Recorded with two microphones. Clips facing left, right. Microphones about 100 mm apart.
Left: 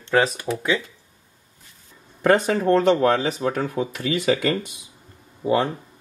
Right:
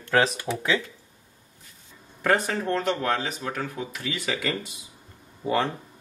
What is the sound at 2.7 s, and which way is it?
Speech, 40° left (ahead or behind).